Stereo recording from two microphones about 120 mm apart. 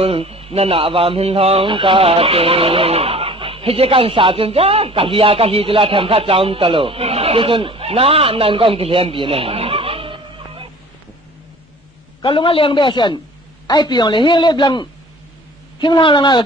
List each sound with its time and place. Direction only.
0.0 s a man's voice: 55° right (ahead or behind)
12.2 s a man's voice: 45° left (ahead or behind)